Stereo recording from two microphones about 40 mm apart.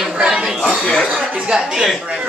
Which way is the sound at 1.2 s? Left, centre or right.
Centre.